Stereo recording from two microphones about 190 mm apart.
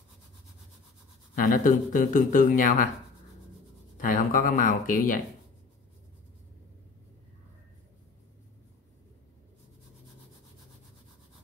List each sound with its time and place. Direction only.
1.3 s speech: 45° left (ahead or behind)
4.0 s speech: 45° left (ahead or behind)